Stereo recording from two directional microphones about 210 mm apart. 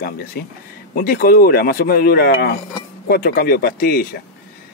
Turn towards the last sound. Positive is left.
turn(degrees=45)  # may be behind; listen again after turning